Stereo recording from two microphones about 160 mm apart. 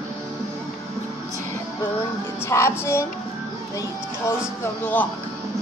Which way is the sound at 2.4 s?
15° left (ahead or behind).